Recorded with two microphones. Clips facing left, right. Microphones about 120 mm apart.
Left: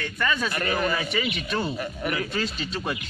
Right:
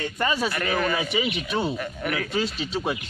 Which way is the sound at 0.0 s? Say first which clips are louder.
Right 2 dB; 25° right (ahead or behind).